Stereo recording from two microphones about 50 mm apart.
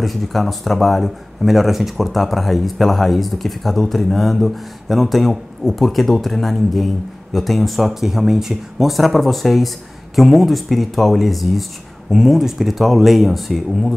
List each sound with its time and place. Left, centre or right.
0.0 s speech: centre